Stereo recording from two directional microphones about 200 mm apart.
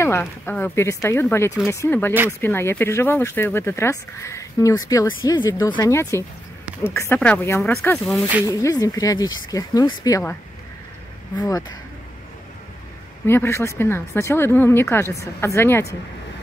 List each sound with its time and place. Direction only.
0.0 s speech: 10° left (ahead or behind)
8.5 s speech: 15° left (ahead or behind)
11.3 s speech: 15° left (ahead or behind)
13.3 s speech: 10° left (ahead or behind)